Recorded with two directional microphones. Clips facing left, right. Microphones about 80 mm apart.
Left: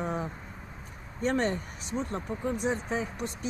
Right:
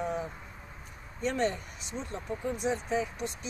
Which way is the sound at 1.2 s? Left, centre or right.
Left.